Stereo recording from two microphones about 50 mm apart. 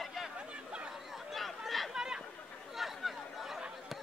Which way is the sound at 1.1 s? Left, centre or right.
Centre.